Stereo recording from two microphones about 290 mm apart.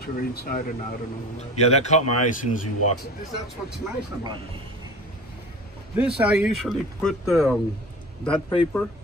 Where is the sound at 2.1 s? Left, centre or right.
Left.